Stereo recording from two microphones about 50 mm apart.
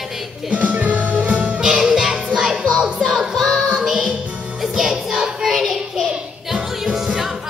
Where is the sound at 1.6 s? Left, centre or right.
Centre.